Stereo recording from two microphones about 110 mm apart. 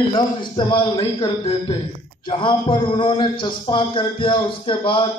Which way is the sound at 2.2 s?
50° left (ahead or behind).